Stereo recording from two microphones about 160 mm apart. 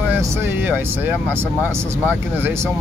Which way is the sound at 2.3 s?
15° right (ahead or behind).